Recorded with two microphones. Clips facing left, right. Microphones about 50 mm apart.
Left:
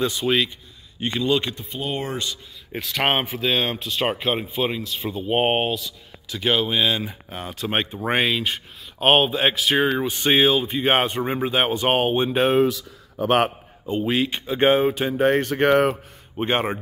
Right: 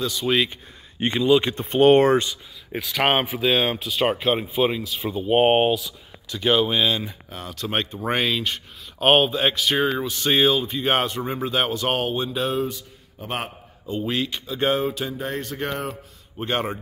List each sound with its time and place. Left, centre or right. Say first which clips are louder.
0.0 s speech: left 3 dB; left
1.0 s speech: right 3 dB; right
1.6 s speech: right 13 dB; right
2.7 s speech: right 1 dB; centre
7.0 s speech: left 2 dB; centre
10.0 s speech: left 2 dB; left
10.4 s speech: left 1 dB; centre; by 12.6 s left
12.6 s speech: left 7 dB; left
14.0 s speech: left 3 dB; centre
15.1 s speech: left 10 dB; left
16.3 s speech: left 3 dB; left